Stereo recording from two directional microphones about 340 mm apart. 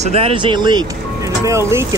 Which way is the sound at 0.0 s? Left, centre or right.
Centre.